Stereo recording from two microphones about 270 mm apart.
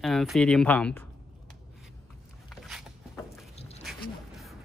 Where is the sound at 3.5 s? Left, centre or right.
Left.